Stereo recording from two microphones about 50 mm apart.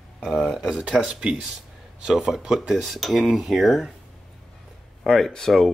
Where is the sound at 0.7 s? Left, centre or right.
Centre.